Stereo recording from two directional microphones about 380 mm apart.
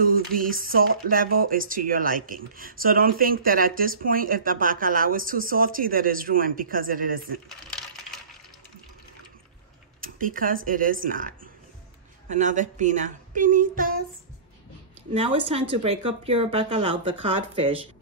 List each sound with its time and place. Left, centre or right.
0.0 s speech: right
7.4 s coin: centre
9.9 s speech: right
15.1 s speech: centre